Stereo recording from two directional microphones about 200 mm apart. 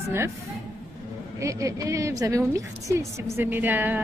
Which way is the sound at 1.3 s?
15° right (ahead or behind).